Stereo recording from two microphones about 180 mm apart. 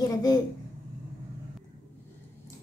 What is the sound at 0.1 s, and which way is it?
Speech, 20° left (ahead or behind).